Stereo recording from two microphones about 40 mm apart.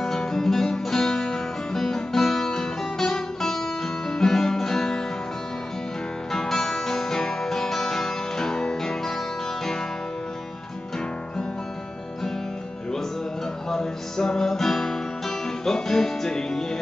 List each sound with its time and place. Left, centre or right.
0.0 s music: centre
6.3 s music: centre
13.7 s music: centre